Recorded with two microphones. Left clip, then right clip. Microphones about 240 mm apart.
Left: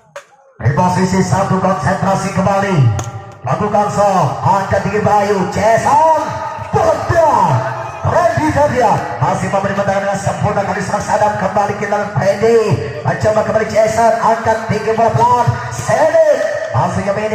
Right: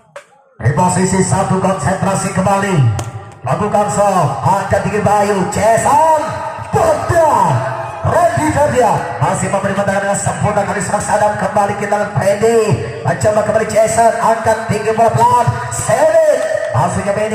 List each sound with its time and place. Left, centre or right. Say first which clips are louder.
0.7 s music: even; right
10.4 s music: right 1 dB; right
15.9 s speech: even; right